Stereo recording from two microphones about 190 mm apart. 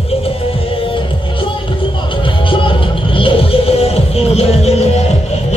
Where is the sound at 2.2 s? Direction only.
25° left (ahead or behind).